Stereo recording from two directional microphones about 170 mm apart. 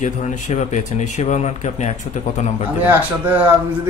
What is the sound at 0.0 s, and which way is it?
Speech, 45° left (ahead or behind).